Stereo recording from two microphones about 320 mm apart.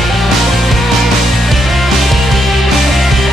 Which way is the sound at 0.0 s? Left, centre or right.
Centre.